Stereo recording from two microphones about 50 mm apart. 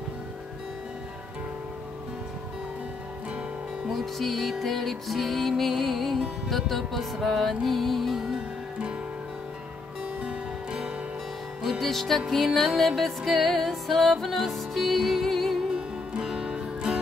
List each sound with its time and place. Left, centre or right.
3.9 s music: centre
10.2 s music: right
11.8 s music: centre
15.7 s music: centre